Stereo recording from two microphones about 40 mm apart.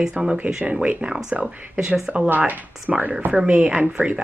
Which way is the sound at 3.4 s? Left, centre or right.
Right.